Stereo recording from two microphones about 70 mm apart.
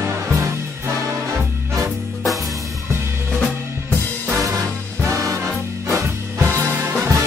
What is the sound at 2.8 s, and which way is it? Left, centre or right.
Drum kit, right.